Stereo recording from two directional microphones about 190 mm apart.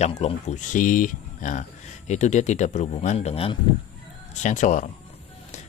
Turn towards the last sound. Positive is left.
turn(degrees=40)  # may be behind; listen again after turning